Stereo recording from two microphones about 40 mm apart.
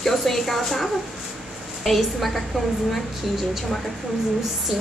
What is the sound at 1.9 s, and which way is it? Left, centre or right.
Speech, centre.